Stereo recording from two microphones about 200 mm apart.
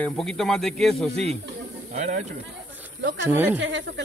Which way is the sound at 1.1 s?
35° right (ahead or behind).